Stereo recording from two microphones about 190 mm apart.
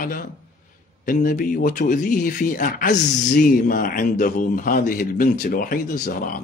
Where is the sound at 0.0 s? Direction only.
50° left (ahead or behind).